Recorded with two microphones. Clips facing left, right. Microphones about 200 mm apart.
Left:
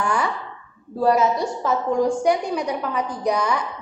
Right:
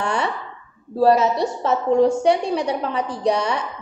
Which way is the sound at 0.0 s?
25° right (ahead or behind).